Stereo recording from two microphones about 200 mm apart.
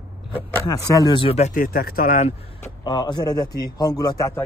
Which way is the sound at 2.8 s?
20° left (ahead or behind).